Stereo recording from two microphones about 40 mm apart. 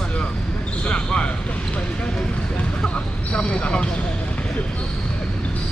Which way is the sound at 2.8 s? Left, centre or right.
Left.